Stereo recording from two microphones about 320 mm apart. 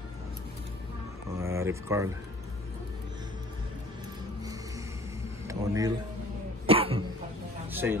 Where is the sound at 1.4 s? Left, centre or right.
Centre.